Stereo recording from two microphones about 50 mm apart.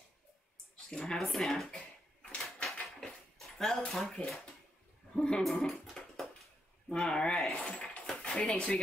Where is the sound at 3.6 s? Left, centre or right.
Centre.